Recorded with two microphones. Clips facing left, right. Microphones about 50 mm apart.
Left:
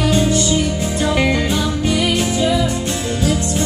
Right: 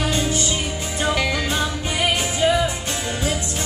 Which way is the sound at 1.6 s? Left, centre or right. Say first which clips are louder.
Left 5 dB; right.